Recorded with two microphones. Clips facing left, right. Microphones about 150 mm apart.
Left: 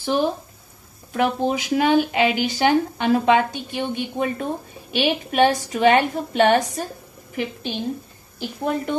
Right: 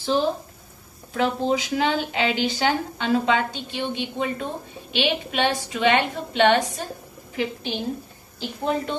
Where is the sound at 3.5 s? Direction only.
50° left (ahead or behind).